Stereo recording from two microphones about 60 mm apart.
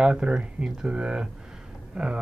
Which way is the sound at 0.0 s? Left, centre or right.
Centre.